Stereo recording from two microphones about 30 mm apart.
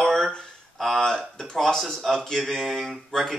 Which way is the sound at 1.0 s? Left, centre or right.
Centre.